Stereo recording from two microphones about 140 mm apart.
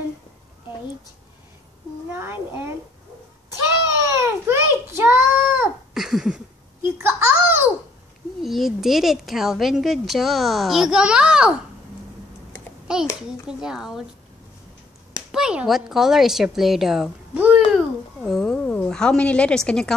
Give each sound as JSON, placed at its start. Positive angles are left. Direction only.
{"t": 2.1, "sound": "a child's voice", "side_deg": -15}
{"t": 4.0, "sound": "baby cry", "side_deg": -20}
{"t": 5.9, "sound": "a sound", "side_deg": 0}
{"t": 7.0, "sound": "a sound", "side_deg": -15}
{"t": 8.4, "sound": "a woman's voice", "side_deg": 0}
{"t": 13.5, "sound": "a woman's voice", "side_deg": -5}
{"t": 15.3, "sound": "a woman's voice", "side_deg": -5}
{"t": 18.2, "sound": "a woman's voice", "side_deg": 0}